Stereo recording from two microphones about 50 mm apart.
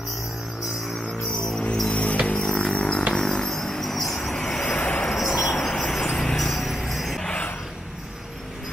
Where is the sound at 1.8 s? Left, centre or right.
Left; by 4.6 s centre.